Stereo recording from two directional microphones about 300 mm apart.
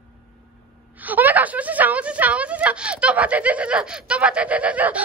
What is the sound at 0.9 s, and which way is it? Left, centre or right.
A woman's voice, centre.